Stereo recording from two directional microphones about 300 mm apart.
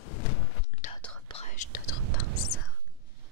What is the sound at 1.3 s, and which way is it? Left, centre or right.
Whispering, left.